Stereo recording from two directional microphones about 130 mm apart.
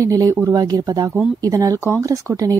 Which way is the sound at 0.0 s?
25° right (ahead or behind).